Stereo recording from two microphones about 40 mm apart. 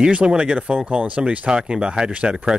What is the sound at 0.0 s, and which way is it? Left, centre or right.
Speech, right.